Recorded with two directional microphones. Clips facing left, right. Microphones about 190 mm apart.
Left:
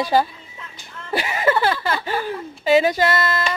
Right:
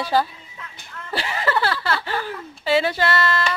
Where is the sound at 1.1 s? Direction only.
15° left (ahead or behind).